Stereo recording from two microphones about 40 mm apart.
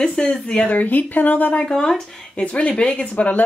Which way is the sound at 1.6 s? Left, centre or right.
Left.